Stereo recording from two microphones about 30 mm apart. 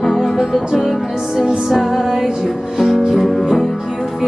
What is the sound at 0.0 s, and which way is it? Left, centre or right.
Music, centre.